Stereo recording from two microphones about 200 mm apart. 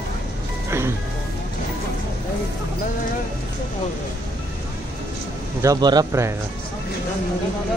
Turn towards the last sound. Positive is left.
turn(degrees=-15)  # may be behind; listen again after turning